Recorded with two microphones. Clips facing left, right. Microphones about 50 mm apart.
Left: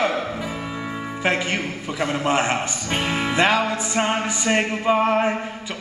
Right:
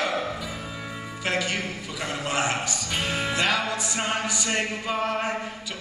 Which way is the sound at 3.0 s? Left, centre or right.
Left.